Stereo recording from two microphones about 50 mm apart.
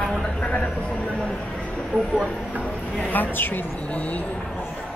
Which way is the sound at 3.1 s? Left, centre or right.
Left.